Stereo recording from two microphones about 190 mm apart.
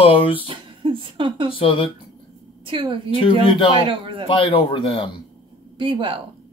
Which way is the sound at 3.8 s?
25° right (ahead or behind).